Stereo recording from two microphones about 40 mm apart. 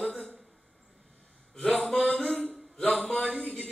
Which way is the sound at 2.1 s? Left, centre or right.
Centre.